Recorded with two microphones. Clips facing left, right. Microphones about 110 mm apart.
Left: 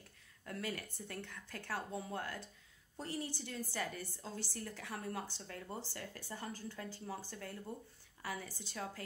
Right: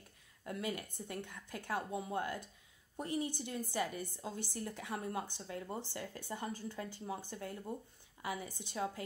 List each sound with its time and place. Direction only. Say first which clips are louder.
0.4 s a woman's voice: right 3 dB; 20° right (ahead or behind)